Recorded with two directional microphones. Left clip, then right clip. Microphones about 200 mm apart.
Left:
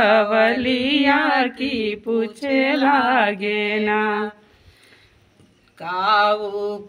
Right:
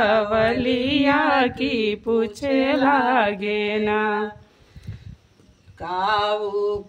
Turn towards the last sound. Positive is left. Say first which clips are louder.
# left 3 dB
turn(degrees=0)  # may be behind; listen again after turning